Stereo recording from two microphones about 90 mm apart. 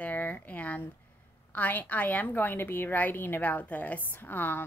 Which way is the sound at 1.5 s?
20° left (ahead or behind).